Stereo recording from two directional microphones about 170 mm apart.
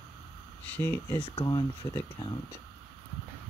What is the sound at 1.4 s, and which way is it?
Speech, 25° left (ahead or behind).